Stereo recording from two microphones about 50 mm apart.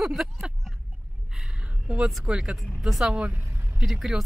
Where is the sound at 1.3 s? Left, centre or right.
Centre.